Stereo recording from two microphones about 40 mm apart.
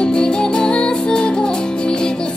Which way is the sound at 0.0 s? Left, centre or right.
Left.